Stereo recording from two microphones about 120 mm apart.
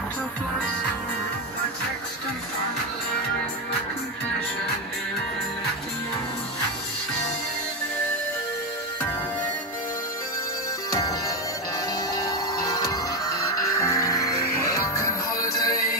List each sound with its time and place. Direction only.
10.9 s music: 30° left (ahead or behind)